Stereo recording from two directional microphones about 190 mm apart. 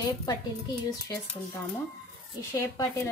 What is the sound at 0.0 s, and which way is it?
Speech, 20° left (ahead or behind).